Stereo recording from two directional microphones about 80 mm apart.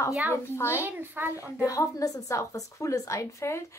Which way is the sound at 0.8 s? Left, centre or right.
Right.